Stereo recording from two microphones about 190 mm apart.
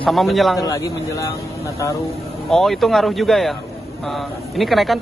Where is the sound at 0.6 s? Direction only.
15° left (ahead or behind).